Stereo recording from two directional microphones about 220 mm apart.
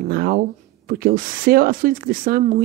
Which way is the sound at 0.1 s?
45° right (ahead or behind).